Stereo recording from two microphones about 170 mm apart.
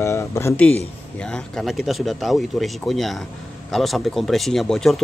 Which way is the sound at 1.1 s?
5° left (ahead or behind).